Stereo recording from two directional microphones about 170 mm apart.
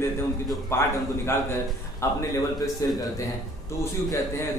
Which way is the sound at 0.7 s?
15° left (ahead or behind).